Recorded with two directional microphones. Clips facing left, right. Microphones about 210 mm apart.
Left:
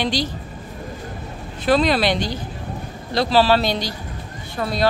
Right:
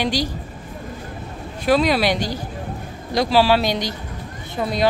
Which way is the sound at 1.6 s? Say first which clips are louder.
Even; 10° right (ahead or behind).